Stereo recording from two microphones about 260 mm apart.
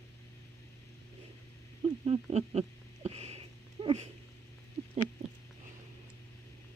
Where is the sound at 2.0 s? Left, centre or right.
Right.